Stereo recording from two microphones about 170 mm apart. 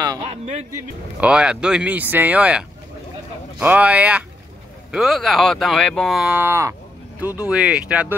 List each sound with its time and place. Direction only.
0.0 s speech: 25° right (ahead or behind)
1.2 s speech: 5° right (ahead or behind)